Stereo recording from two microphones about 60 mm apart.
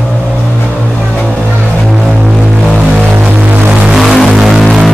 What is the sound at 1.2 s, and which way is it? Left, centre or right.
Music, left.